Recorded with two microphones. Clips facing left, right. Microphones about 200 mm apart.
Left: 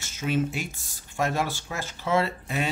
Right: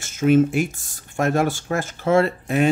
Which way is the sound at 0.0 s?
50° right (ahead or behind).